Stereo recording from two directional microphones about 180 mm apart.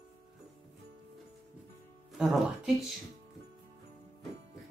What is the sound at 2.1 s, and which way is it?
Speech, centre (ahead or behind).